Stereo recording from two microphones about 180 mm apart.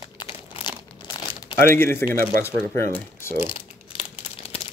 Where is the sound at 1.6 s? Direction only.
15° left (ahead or behind).